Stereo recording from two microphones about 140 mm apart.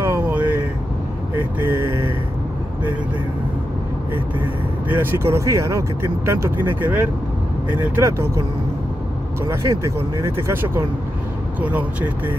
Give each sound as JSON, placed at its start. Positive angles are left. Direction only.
{"t": 0.0, "sound": "vehicle", "side_deg": -15}
{"t": 4.9, "sound": "speech", "side_deg": -15}
{"t": 9.5, "sound": "speech", "side_deg": -20}